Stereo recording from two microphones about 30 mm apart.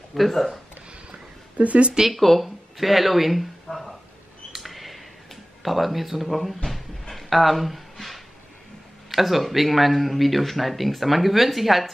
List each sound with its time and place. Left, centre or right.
0.1 s speech: centre
1.6 s speech: right
2.4 s speech: centre
4.5 s a sound: centre
6.7 s cupboard open or close: centre
9.1 s speech: centre